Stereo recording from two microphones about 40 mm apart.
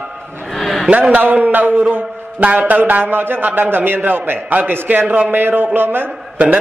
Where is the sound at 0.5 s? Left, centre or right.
Centre.